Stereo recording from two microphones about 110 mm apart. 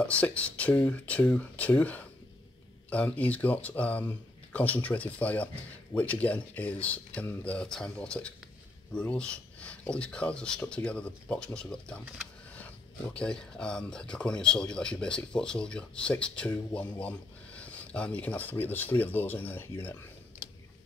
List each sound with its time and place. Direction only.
0.0 s speech: 10° left (ahead or behind)